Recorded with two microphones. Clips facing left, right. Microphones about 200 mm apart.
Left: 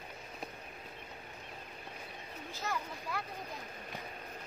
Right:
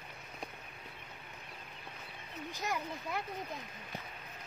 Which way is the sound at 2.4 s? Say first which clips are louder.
Right 1 dB; 15° right (ahead or behind).